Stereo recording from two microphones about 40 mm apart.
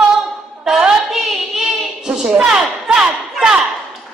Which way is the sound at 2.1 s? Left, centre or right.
Right.